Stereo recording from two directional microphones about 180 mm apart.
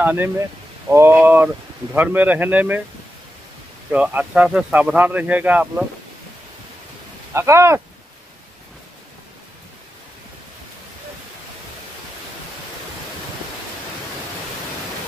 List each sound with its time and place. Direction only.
0.0 s speech: 10° right (ahead or behind)
3.9 s speech: 10° right (ahead or behind)
7.3 s speech: 15° right (ahead or behind)